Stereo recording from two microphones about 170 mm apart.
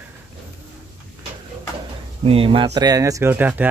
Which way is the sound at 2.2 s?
35° right (ahead or behind).